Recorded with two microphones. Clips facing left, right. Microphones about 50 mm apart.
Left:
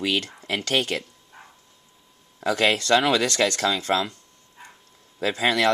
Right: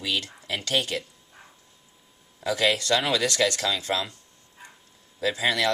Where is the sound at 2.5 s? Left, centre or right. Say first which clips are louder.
Left 3 dB; left.